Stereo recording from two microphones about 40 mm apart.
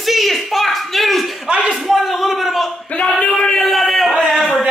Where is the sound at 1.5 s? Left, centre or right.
Right.